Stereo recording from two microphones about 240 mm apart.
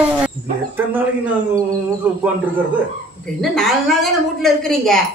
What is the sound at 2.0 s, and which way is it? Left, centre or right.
Speech, centre.